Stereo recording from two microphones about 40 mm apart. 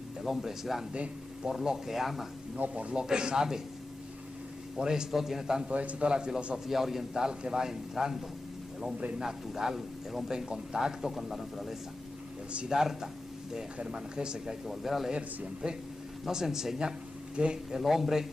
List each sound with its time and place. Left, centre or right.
0.2 s a man's voice: centre
2.5 s a man's voice: right
2.9 s speech: right
4.7 s a man's voice: centre
5.7 s a man's voice: right
6.0 s a man's voice: centre
7.2 s a man's voice: centre
9.2 s a man's voice: centre
11.0 s speech: centre
13.7 s speech: right
14.7 s speech: centre
15.1 s a man's voice: right